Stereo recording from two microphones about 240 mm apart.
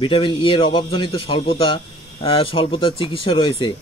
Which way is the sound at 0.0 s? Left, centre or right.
Left.